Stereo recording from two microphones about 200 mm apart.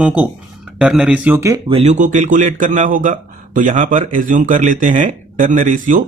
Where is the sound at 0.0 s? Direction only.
10° right (ahead or behind).